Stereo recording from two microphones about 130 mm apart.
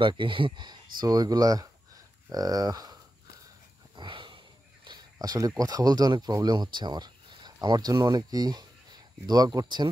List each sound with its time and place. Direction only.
0.0 s speech: 40° right (ahead or behind)
3.9 s a sound: 35° right (ahead or behind)
5.6 s speech: 30° right (ahead or behind)